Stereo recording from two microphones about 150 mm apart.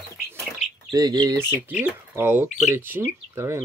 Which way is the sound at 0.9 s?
25° right (ahead or behind).